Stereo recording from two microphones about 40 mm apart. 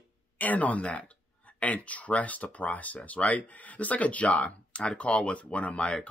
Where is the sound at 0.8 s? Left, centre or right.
Left.